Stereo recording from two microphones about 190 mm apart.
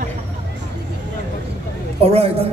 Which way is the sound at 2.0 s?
30° right (ahead or behind).